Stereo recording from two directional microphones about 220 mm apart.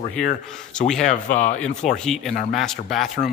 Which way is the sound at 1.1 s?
35° left (ahead or behind).